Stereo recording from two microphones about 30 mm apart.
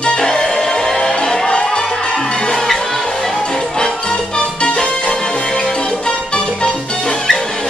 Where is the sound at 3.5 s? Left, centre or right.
Left.